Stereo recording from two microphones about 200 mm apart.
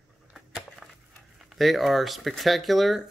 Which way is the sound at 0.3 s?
Centre (ahead or behind).